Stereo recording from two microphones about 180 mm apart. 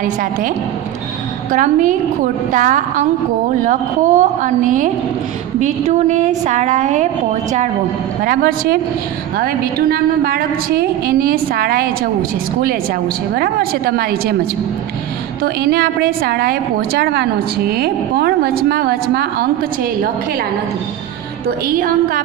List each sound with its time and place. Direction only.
0.0 s a woman's voice: 50° right (ahead or behind)
1.5 s a woman's voice: 45° right (ahead or behind)
8.2 s a woman's voice: 55° right (ahead or behind)
21.6 s a woman's voice: 50° right (ahead or behind)